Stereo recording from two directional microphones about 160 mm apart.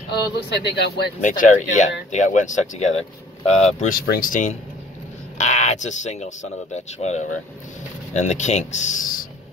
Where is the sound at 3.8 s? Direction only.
60° left (ahead or behind).